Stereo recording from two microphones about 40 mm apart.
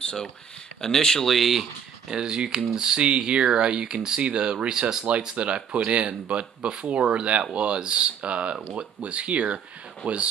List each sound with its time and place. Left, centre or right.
0.0 s a sound: centre
0.7 s speech: centre
1.2 s speech: centre
2.0 s speech: centre; by 10.2 s right